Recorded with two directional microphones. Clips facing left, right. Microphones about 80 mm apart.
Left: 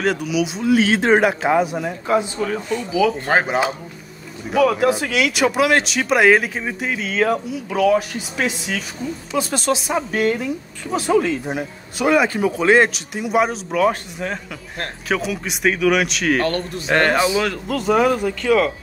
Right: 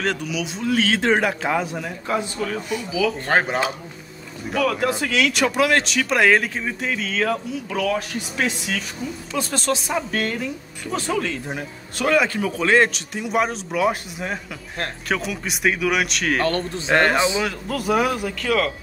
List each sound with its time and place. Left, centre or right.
0.0 s speech: centre
3.3 s speech: centre